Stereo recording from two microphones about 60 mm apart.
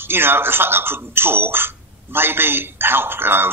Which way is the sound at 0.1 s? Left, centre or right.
Right.